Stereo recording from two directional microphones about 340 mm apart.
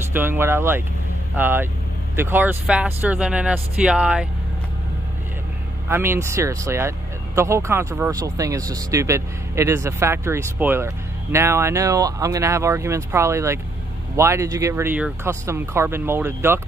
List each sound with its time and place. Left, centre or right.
0.1 s speech: centre
5.9 s speech: centre